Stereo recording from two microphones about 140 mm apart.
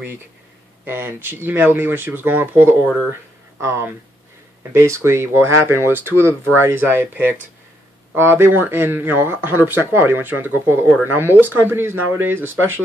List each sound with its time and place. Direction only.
0.8 s speech: 15° right (ahead or behind)